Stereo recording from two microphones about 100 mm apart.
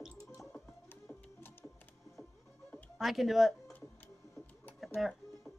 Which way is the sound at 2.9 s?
Centre (ahead or behind).